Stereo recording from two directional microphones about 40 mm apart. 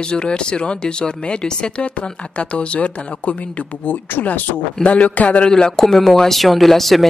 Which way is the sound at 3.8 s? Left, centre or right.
Left.